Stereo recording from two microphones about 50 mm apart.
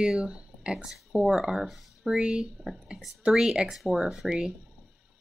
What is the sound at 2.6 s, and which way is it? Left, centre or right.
Speech, centre.